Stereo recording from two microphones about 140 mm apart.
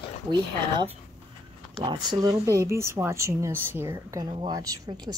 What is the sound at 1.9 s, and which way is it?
Speech, 30° right (ahead or behind).